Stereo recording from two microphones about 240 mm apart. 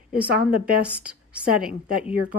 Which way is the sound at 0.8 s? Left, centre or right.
Centre.